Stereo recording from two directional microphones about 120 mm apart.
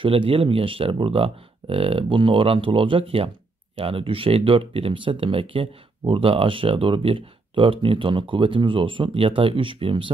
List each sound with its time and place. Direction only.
0.0 s speech: 45° right (ahead or behind)